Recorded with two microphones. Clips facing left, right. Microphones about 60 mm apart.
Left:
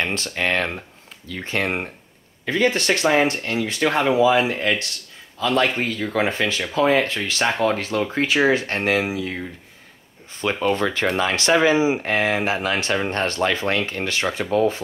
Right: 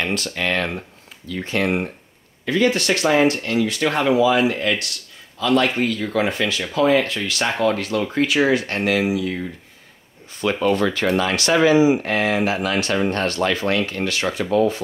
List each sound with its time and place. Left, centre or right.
0.0 s speech: left
10.7 s speech: left